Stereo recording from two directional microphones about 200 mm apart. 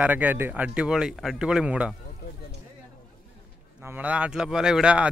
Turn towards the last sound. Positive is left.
turn(degrees=-5)  # may be behind; listen again after turning